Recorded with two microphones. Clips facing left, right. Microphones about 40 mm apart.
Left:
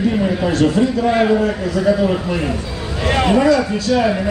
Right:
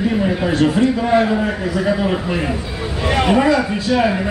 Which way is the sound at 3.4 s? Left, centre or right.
Right.